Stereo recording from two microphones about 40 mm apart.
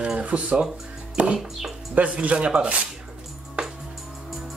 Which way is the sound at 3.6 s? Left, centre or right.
Right.